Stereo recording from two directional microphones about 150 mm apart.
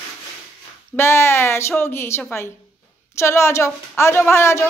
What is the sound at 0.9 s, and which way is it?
A woman's voice, 15° left (ahead or behind).